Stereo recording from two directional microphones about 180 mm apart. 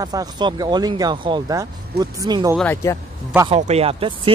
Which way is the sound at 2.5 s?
5° left (ahead or behind).